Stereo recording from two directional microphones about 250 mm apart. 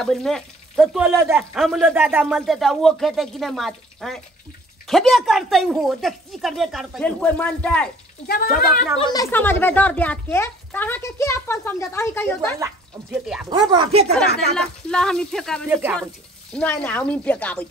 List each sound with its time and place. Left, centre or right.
0.0 s speech: centre
8.3 s speech: left
9.1 s a child's voice: centre
12.5 s speech: centre
13.5 s speech: centre
14.1 s speech: centre
16.5 s speech: centre